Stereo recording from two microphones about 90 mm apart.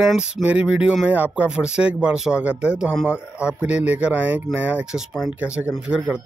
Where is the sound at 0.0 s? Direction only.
10° right (ahead or behind).